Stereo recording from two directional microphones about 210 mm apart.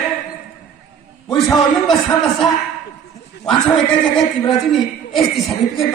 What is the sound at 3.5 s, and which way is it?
Speech, 20° left (ahead or behind).